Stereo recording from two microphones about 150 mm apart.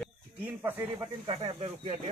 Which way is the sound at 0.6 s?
15° right (ahead or behind).